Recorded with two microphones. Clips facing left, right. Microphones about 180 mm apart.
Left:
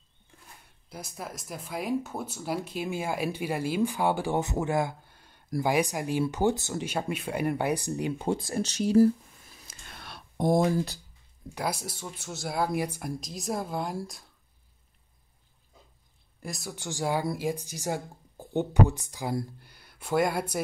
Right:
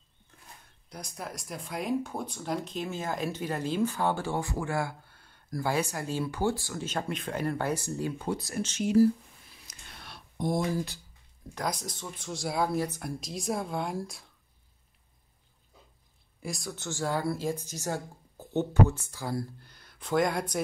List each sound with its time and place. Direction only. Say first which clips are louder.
0.8 s speech: left 1 dB; 5° left (ahead or behind); by 6.9 s 20° left (ahead or behind)
6.9 s speech: even; 10° left (ahead or behind); by 8.9 s 35° left (ahead or behind)
8.9 s a sound: left 2 dB; 50° left (ahead or behind)
10.0 s a sound: left 8 dB; 65° left (ahead or behind)
10.4 s speech: left 5 dB; 45° left (ahead or behind)
11.5 s speech: left 1 dB; 5° left (ahead or behind)
13.2 s a woman's voice: right 2 dB; centre (ahead or behind)
16.4 s a woman's voice: right 1 dB; centre (ahead or behind)
16.7 s speech: left 3 dB; 15° left (ahead or behind)